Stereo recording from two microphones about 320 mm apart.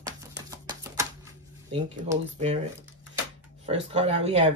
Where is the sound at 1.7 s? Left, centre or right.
Centre.